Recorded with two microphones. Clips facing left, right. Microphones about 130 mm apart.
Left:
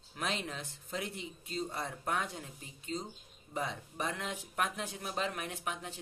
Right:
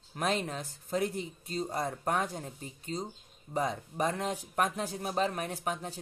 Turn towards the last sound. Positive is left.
turn(degrees=-40)  # may be behind; listen again after turning